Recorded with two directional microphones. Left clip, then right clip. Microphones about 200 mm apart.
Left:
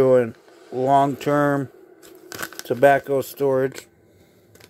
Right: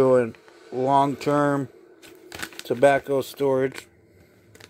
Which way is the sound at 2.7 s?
5° left (ahead or behind).